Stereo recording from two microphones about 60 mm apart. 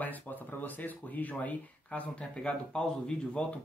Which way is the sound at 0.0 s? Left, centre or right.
Left.